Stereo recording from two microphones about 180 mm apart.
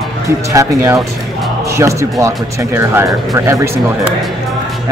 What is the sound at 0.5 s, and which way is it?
Speech, 15° right (ahead or behind).